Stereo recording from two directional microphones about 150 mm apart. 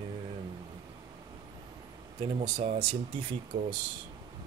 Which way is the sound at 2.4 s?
35° right (ahead or behind).